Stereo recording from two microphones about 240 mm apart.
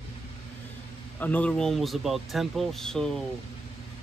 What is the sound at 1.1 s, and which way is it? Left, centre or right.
Speech, centre.